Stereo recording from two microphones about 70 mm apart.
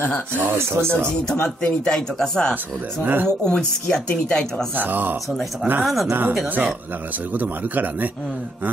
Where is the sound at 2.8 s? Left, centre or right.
Right.